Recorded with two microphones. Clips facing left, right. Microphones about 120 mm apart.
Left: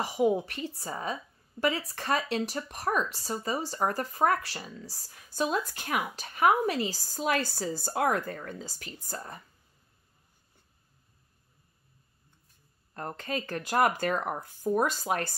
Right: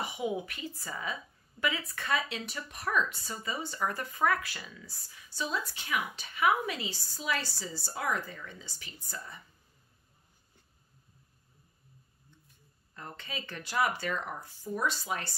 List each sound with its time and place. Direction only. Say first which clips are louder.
0.1 s a woman's voice: left 8 dB; 35° left (ahead or behind)
12.9 s speech: left 8 dB; 45° left (ahead or behind)